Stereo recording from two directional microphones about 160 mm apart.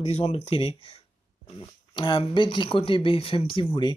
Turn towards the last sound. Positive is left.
turn(degrees=35)  # may be behind; listen again after turning